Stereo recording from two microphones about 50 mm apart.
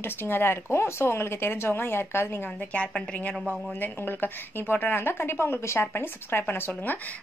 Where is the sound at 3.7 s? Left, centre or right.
Left.